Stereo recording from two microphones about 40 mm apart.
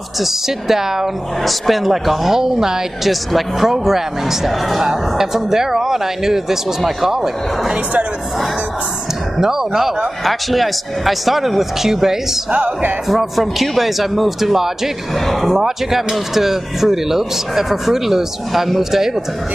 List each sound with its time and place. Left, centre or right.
0.2 s speech: centre
9.4 s speech: centre
12.4 s speech: right
13.1 s a man's voice: centre